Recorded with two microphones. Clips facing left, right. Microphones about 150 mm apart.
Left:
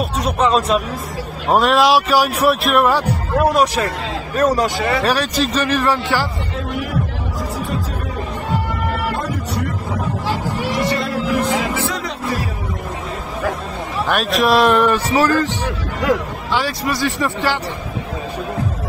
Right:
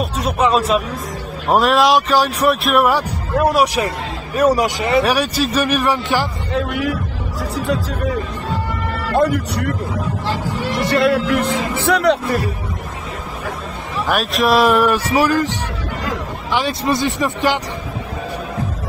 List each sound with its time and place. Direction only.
0.6 s a man's voice: centre (ahead or behind)
2.6 s a man's voice: centre (ahead or behind)
3.6 s a man's voice: 15° right (ahead or behind)
6.7 s music: 85° right
7.5 s speech: 85° right
9.1 s music: 70° right (ahead or behind)
10.5 s speech: 10° left (ahead or behind)
10.8 s music: 65° right (ahead or behind)
14.0 s a man's voice: centre (ahead or behind)
16.5 s speech: 20° right (ahead or behind)